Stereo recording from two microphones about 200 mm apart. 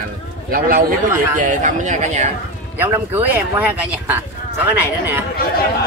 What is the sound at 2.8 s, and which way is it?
Speech, 10° right (ahead or behind).